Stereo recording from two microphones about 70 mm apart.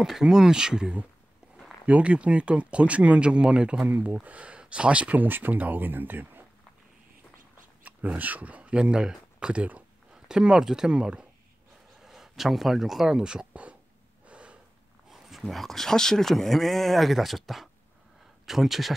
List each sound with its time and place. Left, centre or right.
0.0 s speech: centre
3.9 s speech: right
7.8 s speech: right
14.2 s snort: centre
15.0 s speech: centre